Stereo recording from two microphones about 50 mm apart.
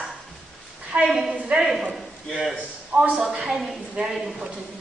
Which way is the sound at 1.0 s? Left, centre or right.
Centre.